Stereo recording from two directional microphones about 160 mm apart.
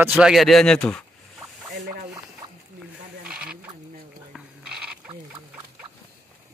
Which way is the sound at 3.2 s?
5° right (ahead or behind).